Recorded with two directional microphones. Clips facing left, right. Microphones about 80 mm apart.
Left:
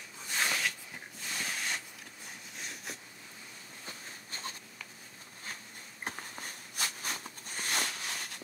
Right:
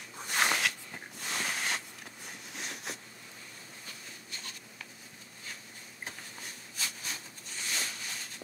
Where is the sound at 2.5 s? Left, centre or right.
Right.